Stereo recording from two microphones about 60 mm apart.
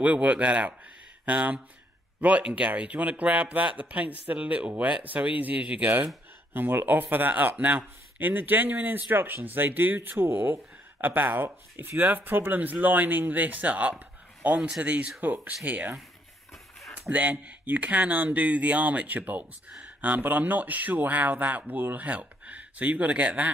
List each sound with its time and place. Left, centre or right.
0.0 s speech: right
17.1 s speech: right